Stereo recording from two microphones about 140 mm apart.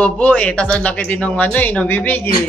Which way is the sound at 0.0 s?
10° left (ahead or behind).